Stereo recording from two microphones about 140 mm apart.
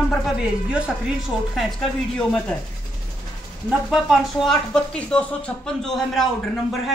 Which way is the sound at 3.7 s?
5° right (ahead or behind).